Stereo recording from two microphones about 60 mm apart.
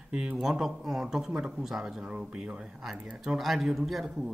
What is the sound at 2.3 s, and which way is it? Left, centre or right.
Speech, centre.